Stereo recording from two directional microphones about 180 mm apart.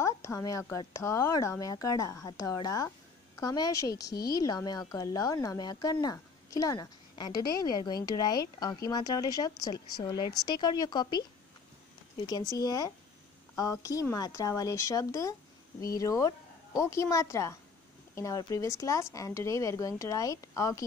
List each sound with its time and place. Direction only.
0.0 s speech: 15° left (ahead or behind)
3.9 s a woman's voice: 60° left (ahead or behind)
4.3 s speech: 20° left (ahead or behind)
12.3 s speech: 20° left (ahead or behind)